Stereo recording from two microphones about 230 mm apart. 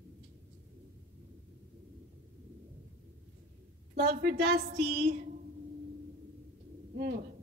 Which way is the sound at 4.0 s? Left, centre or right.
Right.